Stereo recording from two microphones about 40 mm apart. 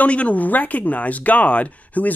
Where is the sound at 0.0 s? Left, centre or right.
Left.